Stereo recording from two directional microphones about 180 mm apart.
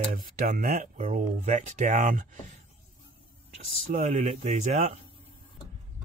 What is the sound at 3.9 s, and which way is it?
Speech, 45° right (ahead or behind).